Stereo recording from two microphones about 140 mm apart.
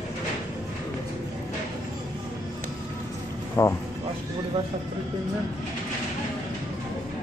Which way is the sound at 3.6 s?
20° left (ahead or behind).